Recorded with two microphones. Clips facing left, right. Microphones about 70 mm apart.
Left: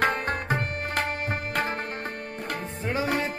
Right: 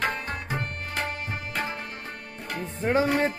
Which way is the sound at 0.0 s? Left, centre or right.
Left.